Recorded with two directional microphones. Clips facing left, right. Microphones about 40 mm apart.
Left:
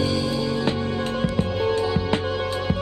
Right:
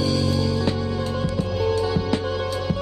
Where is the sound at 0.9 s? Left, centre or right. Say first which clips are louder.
Left 1 dB; left.